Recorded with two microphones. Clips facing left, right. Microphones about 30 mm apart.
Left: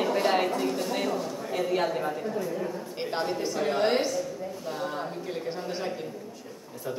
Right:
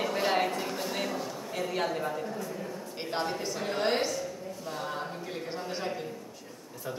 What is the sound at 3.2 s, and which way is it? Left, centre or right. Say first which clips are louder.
Speech: left 4 dB; centre.